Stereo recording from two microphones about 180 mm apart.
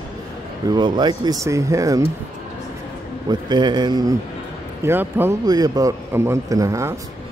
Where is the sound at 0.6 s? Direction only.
25° right (ahead or behind).